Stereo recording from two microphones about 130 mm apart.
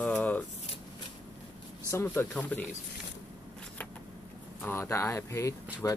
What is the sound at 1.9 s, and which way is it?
Speech, 15° left (ahead or behind).